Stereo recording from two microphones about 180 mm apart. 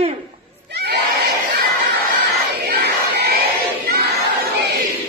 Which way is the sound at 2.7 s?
60° right (ahead or behind).